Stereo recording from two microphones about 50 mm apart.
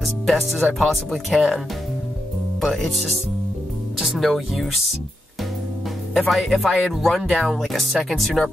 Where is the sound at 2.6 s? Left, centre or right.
Centre.